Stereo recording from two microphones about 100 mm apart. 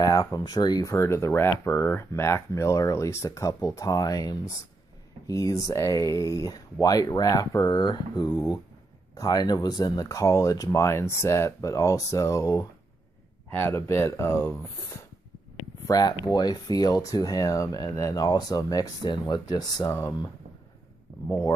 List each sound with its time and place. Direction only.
0.0 s speech: 35° left (ahead or behind)
0.8 s speech: 30° left (ahead or behind)
15.9 s speech: 40° left (ahead or behind)
19.0 s speech: 50° left (ahead or behind)
21.3 s speech: 20° left (ahead or behind)